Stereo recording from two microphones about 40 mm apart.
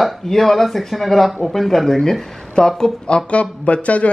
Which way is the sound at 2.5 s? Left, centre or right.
Centre.